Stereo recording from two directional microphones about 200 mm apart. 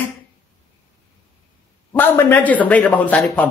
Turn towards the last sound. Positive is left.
turn(degrees=5)  # may be behind; listen again after turning